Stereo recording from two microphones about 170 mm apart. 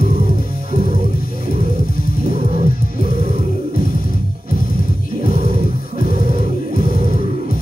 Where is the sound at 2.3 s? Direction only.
40° right (ahead or behind).